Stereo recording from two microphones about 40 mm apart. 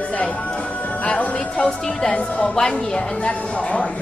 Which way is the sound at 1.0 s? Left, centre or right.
Left.